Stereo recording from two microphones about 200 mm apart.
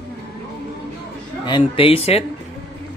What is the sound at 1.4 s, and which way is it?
Speech, 25° left (ahead or behind).